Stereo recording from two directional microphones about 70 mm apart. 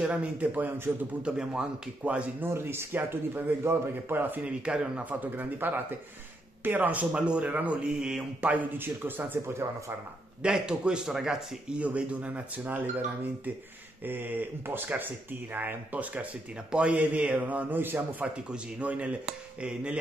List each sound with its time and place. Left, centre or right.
0.0 s a man's voice: centre
1.2 s speech: centre
2.4 s a man's voice: right
4.5 s a man's voice: centre
9.5 s speech: right
10.4 s speech: centre
14.0 s a man's voice: right
18.2 s a man's voice: centre